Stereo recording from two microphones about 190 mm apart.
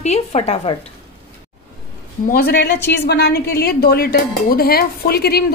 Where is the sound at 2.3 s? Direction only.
50° left (ahead or behind).